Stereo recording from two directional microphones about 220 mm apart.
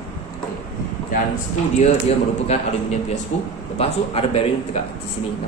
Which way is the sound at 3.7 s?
25° left (ahead or behind).